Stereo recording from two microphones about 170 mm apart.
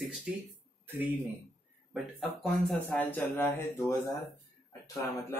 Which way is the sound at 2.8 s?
10° left (ahead or behind).